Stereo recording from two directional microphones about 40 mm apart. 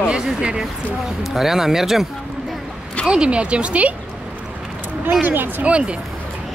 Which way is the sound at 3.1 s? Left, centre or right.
Right.